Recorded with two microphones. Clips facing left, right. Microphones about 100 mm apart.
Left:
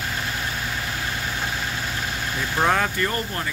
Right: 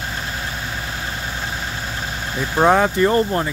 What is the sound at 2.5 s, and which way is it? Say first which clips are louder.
Speech: right 7 dB; 25° right (ahead or behind).